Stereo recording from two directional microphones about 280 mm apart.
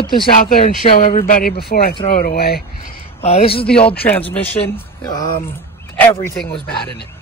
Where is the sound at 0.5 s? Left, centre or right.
Left.